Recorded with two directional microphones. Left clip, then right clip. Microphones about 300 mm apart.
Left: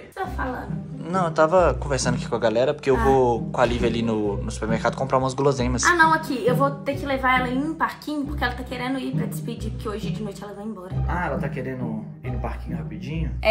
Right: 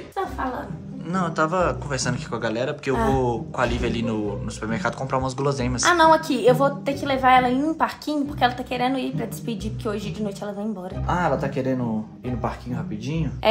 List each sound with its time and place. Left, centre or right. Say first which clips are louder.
1.1 s speech: left 4 dB; centre
5.8 s a woman's voice: right 3 dB; right